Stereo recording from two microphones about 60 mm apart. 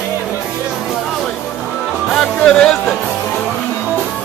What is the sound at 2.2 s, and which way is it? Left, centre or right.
Music, centre.